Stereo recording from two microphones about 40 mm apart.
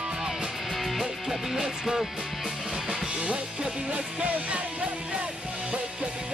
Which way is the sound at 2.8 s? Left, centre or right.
Right.